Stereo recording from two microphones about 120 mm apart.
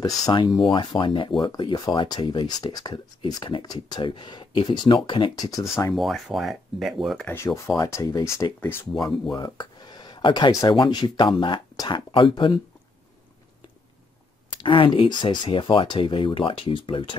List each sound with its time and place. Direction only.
0.3 s speech: 35° left (ahead or behind)
5.5 s speech: 25° left (ahead or behind)
5.9 s speech: centre (ahead or behind)
7.2 s speech: 25° left (ahead or behind)
9.2 s a sound: 35° left (ahead or behind)
10.7 s speech: 40° left (ahead or behind)
14.6 s speech: 45° left (ahead or behind)